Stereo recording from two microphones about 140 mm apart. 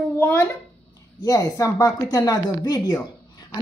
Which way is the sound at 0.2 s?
15° left (ahead or behind).